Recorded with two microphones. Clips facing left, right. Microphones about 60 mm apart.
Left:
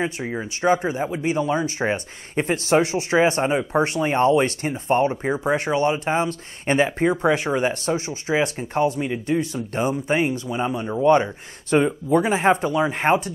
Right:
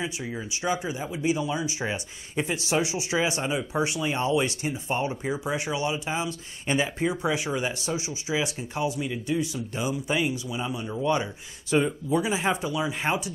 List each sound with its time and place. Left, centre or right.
0.0 s speech: left
12.1 s speech: left